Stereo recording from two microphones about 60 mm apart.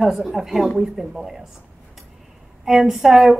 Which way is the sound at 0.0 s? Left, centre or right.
Centre.